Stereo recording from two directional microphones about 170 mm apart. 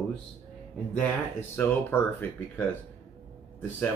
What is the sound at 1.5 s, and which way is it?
Speech, 15° left (ahead or behind).